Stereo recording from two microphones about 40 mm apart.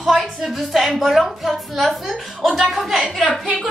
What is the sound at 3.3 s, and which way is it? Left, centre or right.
Speech, right.